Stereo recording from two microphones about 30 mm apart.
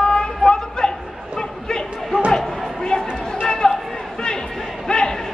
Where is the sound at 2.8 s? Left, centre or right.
Left.